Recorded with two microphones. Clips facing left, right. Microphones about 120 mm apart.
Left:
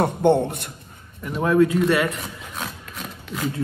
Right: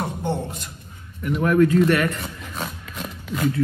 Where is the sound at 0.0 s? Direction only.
65° left (ahead or behind).